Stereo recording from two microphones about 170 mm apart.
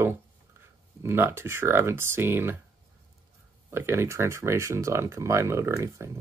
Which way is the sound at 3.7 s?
15° right (ahead or behind).